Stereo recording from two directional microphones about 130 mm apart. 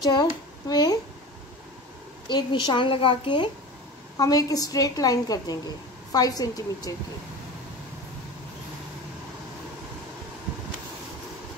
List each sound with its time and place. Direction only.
0.0 s speech: 30° left (ahead or behind)
2.2 s a woman's voice: 35° left (ahead or behind)
4.2 s a woman's voice: 30° left (ahead or behind)